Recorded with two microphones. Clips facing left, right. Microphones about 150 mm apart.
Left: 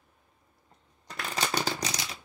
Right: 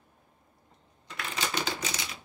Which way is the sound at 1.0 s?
40° left (ahead or behind).